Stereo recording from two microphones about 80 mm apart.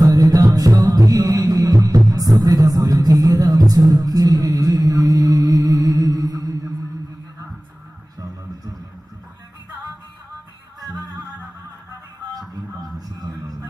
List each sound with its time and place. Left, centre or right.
0.0 s music: right
12.4 s music: right
13.2 s a sound: right